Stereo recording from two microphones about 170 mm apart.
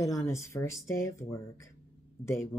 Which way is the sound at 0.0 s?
15° left (ahead or behind).